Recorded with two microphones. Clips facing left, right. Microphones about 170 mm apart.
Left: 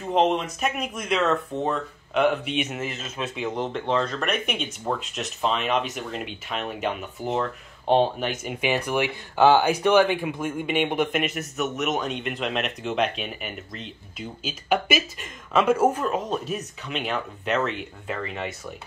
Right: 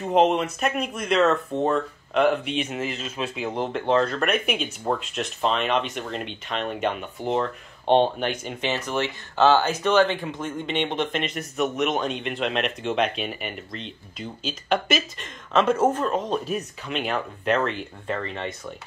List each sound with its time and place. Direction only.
0.1 s speech: centre (ahead or behind)
2.8 s speech: 30° right (ahead or behind)
3.7 s speech: 5° right (ahead or behind)